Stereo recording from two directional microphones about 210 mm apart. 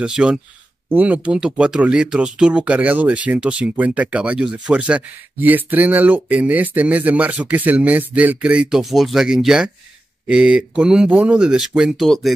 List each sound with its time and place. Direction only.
0.0 s speech: 5° right (ahead or behind)